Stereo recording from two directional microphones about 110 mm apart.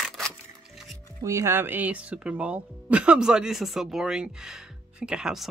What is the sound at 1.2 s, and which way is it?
Speech, 25° right (ahead or behind).